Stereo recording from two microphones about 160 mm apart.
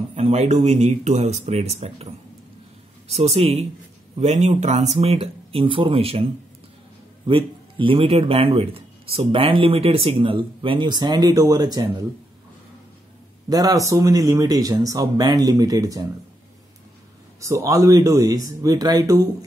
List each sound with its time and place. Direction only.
0.1 s speech: 45° right (ahead or behind)
3.1 s a man's voice: 40° right (ahead or behind)
7.2 s a man's voice: 30° right (ahead or behind)
13.5 s speech: 20° right (ahead or behind)
17.4 s speech: 20° right (ahead or behind)